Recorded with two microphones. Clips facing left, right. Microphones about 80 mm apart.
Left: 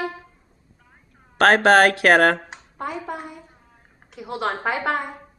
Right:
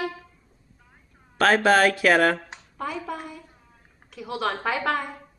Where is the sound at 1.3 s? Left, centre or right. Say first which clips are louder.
Left 4 dB; left.